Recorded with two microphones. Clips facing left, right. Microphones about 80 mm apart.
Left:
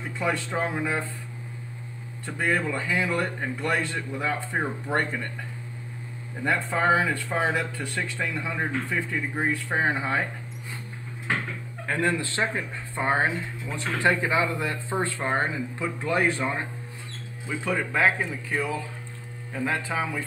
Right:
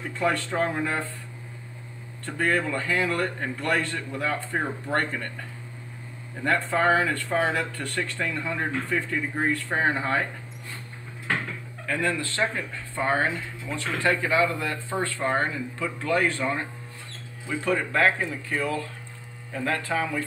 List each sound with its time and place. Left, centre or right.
0.2 s speech: centre
2.2 s speech: centre
6.4 s speech: centre
11.8 s speech: left
17.6 s speech: centre